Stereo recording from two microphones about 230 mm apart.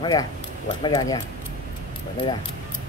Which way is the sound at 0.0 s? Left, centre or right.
Centre.